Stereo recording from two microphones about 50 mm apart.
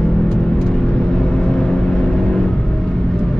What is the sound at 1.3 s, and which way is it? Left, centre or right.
Vehicle, centre.